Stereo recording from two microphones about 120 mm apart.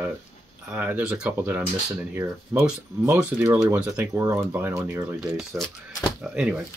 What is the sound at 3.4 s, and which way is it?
Speech, 30° right (ahead or behind).